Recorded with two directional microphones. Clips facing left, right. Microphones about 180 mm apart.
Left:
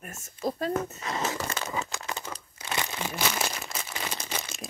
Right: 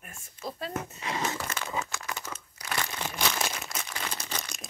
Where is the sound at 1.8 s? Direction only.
25° left (ahead or behind).